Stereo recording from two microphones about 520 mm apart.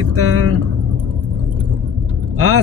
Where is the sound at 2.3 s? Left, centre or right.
Right.